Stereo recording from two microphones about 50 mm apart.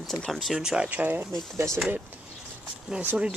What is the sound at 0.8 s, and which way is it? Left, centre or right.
Speech, right.